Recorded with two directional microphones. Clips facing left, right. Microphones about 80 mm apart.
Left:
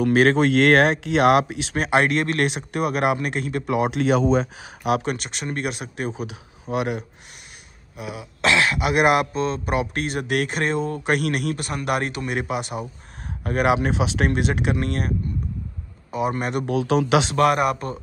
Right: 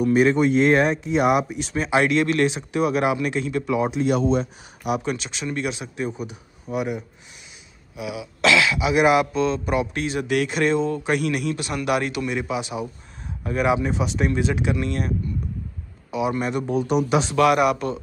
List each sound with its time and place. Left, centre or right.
0.0 s speech: left
1.9 s speech: left
5.0 s speech: left
7.9 s speech: left
11.1 s speech: left
12.4 s speech: left
17.4 s speech: left